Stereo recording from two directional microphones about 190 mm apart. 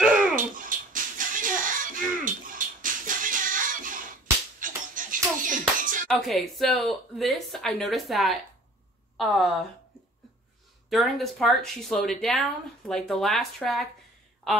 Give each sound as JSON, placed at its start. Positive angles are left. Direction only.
{"t": 0.4, "sound": "music", "side_deg": -45}
{"t": 6.0, "sound": "a woman's voice", "side_deg": 0}
{"t": 10.9, "sound": "a woman's voice", "side_deg": 0}